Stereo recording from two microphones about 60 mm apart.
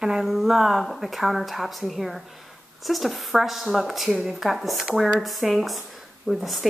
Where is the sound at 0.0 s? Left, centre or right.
Centre.